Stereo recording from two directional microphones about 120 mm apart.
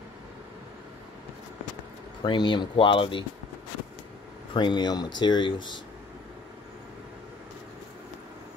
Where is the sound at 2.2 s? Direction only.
40° left (ahead or behind).